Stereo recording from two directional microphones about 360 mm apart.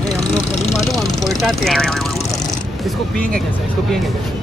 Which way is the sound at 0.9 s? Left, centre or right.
Centre.